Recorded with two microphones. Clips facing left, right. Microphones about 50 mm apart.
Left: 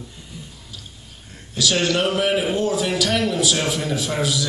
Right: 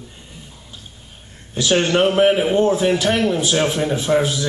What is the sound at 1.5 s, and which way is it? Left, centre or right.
A man's voice, right.